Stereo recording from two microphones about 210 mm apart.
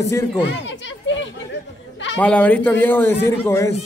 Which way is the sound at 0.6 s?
60° left (ahead or behind).